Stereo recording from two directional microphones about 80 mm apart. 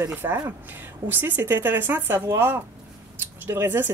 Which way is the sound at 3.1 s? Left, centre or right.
Right.